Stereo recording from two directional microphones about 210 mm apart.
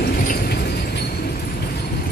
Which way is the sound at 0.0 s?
50° left (ahead or behind).